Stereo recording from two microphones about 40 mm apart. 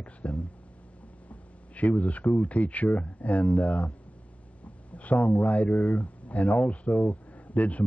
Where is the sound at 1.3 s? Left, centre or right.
Left.